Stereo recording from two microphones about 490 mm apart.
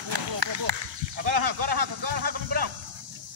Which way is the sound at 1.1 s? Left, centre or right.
Right.